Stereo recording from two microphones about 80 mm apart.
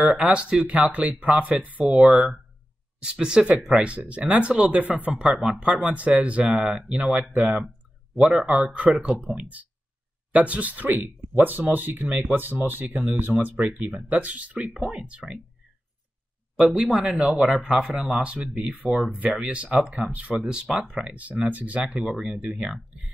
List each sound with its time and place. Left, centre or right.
0.0 s speech: centre
1.9 s speech: centre
5.1 s speech: centre
7.6 s a sound: centre
8.3 s speech: centre
16.5 s speech: centre
19.1 s speech: centre